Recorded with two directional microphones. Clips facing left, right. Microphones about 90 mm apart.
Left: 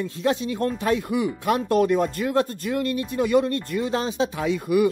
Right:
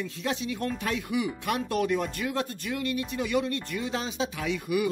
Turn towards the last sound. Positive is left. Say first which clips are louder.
# left 7 dB
turn(degrees=40)  # may be behind; listen again after turning